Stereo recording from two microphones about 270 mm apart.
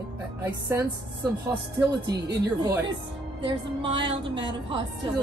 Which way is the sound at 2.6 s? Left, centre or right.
Centre.